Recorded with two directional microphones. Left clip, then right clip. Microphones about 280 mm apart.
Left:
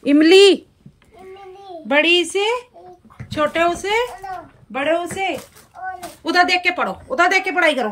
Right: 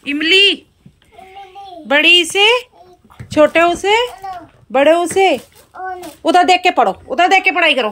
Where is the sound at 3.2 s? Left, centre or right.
Centre.